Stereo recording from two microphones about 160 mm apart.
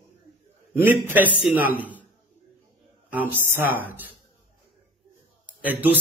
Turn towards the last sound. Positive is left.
turn(degrees=-10)  # may be behind; listen again after turning